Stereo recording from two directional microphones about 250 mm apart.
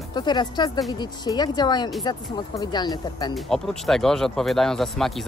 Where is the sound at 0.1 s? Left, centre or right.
Centre.